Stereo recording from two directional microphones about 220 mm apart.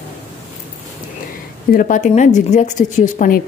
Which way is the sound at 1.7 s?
35° left (ahead or behind).